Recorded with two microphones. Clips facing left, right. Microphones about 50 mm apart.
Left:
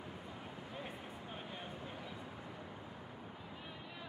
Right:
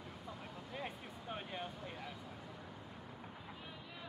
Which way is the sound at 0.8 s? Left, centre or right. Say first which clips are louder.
Right 1 dB; right.